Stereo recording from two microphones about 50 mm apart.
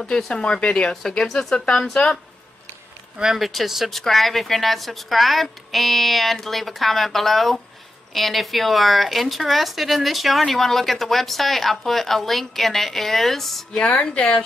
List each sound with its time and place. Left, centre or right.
0.1 s speech: centre
1.0 s speech: centre
3.3 s speech: centre
13.7 s speech: left